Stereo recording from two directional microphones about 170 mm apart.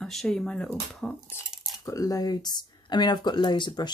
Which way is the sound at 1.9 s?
20° left (ahead or behind).